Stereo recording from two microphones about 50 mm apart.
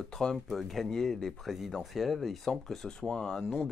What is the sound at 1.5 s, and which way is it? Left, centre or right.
Speech, centre.